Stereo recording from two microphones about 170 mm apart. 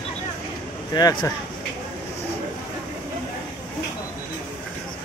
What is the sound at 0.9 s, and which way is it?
Speech, 25° left (ahead or behind).